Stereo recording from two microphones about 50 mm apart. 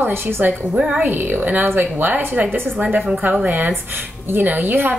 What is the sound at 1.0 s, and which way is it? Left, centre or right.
A woman's voice, right.